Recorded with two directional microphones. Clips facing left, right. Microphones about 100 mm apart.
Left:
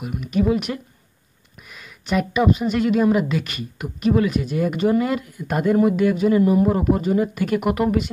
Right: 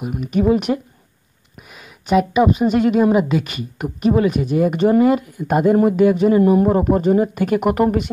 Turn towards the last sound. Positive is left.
turn(degrees=-25)  # may be behind; listen again after turning